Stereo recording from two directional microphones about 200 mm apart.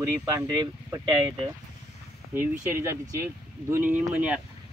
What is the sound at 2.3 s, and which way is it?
Speech, 10° right (ahead or behind).